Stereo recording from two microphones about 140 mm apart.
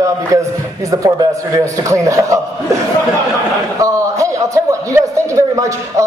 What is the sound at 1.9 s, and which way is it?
Speech, 25° right (ahead or behind).